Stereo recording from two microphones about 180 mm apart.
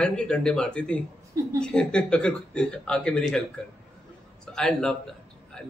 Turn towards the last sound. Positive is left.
turn(degrees=5)  # may be behind; listen again after turning